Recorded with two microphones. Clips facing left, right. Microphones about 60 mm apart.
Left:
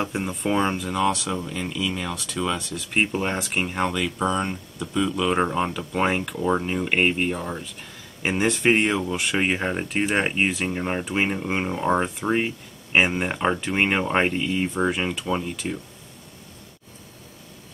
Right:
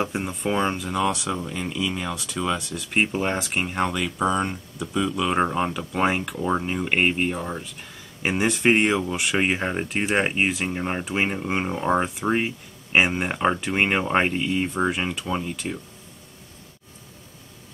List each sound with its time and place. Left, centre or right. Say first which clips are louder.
0.0 s speech: even; centre